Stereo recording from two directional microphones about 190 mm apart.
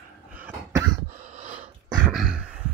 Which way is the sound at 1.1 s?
35° right (ahead or behind).